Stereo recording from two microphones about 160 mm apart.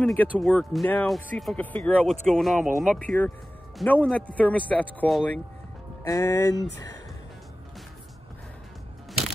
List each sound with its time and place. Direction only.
0.0 s speech: 10° left (ahead or behind)
3.0 s speech: 10° left (ahead or behind)
6.0 s speech: 20° left (ahead or behind)